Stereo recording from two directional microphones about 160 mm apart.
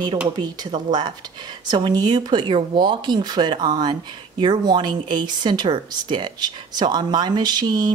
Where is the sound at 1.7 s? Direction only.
25° right (ahead or behind).